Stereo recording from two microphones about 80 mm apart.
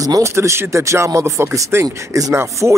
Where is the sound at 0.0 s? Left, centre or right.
Right.